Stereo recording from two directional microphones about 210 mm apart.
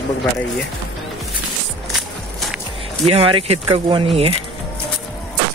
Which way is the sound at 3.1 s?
25° right (ahead or behind).